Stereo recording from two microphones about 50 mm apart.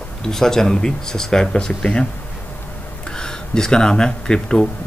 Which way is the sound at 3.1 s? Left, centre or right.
Centre.